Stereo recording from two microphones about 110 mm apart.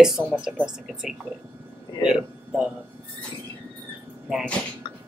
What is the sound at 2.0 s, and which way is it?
Speech, 5° right (ahead or behind).